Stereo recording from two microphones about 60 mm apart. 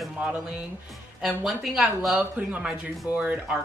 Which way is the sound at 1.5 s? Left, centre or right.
Centre.